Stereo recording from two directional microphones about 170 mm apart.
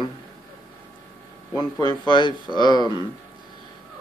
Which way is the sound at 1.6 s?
25° left (ahead or behind).